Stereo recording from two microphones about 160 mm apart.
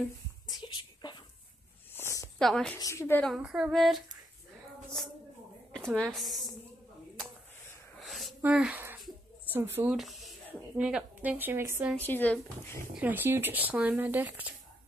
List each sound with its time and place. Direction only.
0.5 s a sound: 30° left (ahead or behind)
2.0 s a sound: 15° left (ahead or behind)
2.3 s a woman's voice: 5° left (ahead or behind)
2.8 s speech: 20° left (ahead or behind)
3.3 s a woman's voice: 5° right (ahead or behind)
5.9 s a woman's voice: centre (ahead or behind)
8.0 s a sound: centre (ahead or behind)
8.4 s speech: 5° right (ahead or behind)
9.9 s speech: centre (ahead or behind)
12.1 s speech: 10° left (ahead or behind)
12.9 s speech: 10° right (ahead or behind)